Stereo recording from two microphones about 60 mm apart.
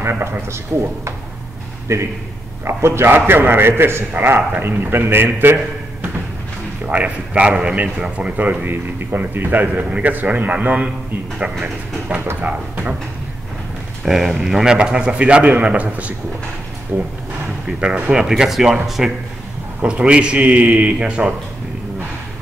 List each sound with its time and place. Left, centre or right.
0.0 s speech: right
1.9 s a man's voice: right
6.9 s a man's voice: right
12.2 s a man's voice: right
12.4 s a man's voice: right
14.0 s a man's voice: centre; by 17.1 s right
17.7 s a man's voice: centre
19.8 s a man's voice: centre